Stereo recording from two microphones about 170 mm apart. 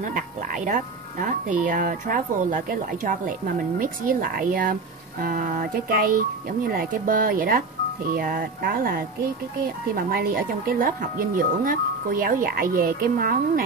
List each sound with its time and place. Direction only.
0.7 s speech: 50° right (ahead or behind)